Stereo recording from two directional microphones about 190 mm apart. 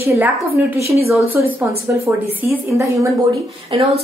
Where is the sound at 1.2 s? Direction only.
90° left.